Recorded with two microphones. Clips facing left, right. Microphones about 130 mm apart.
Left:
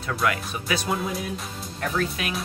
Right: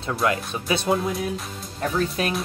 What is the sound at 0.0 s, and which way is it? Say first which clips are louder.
Speech: right 2 dB; 25° right (ahead or behind).